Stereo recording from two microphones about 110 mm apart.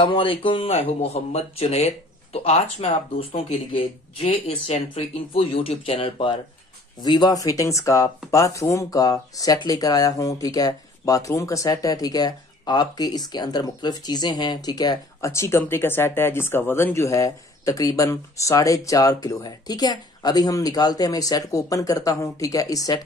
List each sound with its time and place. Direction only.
0.0 s speech: 50° left (ahead or behind)
15.3 s speech: 25° left (ahead or behind)